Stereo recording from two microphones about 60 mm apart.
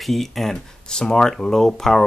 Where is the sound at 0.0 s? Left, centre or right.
Centre.